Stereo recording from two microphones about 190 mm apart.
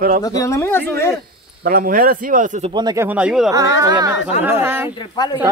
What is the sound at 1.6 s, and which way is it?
Speech, 50° right (ahead or behind).